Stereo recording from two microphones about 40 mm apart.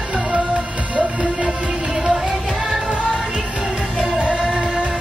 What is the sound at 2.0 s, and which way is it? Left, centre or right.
Music, centre.